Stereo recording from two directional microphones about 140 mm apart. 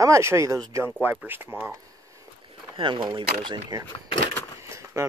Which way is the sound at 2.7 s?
35° right (ahead or behind).